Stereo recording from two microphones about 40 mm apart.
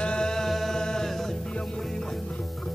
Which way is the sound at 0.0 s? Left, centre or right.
Left.